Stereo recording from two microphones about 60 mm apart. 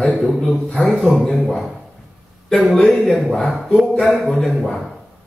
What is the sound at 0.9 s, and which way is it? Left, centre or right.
Speech, centre.